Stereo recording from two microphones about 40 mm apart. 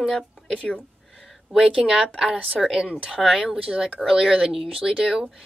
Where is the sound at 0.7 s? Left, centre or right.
Centre.